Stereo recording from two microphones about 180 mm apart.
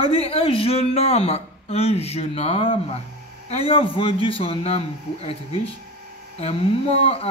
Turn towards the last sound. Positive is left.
turn(degrees=35)  # may be behind; listen again after turning